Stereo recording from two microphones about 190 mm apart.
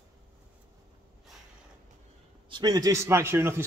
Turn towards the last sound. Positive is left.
turn(degrees=-15)  # may be behind; listen again after turning